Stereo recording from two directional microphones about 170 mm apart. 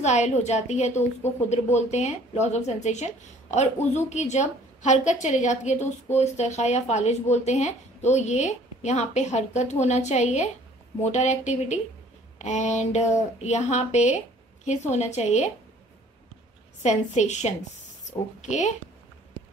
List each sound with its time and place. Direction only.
0.0 s a woman's voice: 40° left (ahead or behind)
16.8 s a woman's voice: 45° left (ahead or behind)